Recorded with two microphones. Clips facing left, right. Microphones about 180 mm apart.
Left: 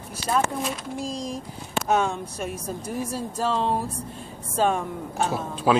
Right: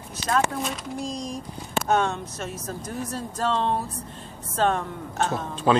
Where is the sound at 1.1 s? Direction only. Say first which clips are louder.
Left 1 dB; 30° left (ahead or behind).